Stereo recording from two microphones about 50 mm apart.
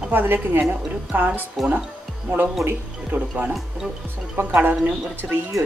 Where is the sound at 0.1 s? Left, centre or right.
Right.